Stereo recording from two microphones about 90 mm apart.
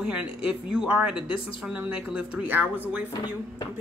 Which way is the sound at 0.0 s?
10° right (ahead or behind).